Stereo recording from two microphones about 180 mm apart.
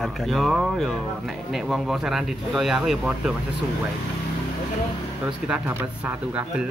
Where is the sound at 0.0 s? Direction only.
Centre (ahead or behind).